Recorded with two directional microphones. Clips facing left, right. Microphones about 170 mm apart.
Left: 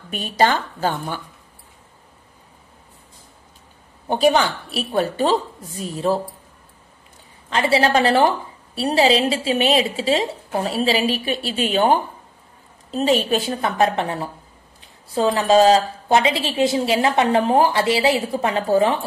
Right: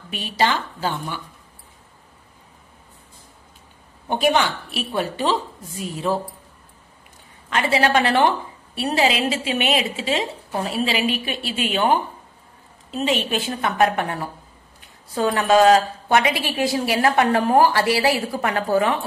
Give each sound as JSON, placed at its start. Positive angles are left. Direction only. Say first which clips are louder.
{"t": 0.1, "sound": "a woman's voice", "louder": "left 3 dB", "side_deg": 45}
{"t": 4.1, "sound": "a woman's voice", "louder": "left 2 dB", "side_deg": 40}
{"t": 7.4, "sound": "a woman's voice", "louder": "left 2 dB", "side_deg": 30}